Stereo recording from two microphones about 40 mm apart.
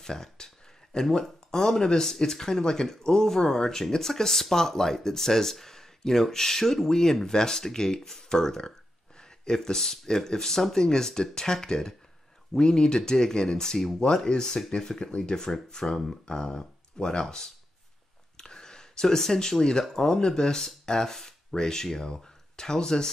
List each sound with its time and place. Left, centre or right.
0.0 s speech: centre